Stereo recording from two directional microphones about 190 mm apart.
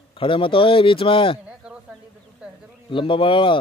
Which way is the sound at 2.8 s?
25° left (ahead or behind).